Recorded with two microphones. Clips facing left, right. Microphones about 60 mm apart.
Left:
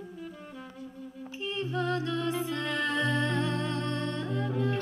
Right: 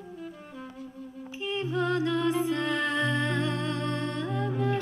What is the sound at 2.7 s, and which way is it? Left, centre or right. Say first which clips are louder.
Humming: right 1 dB; right.